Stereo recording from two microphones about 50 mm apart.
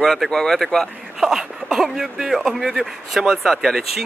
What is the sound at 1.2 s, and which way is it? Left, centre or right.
Speech, centre.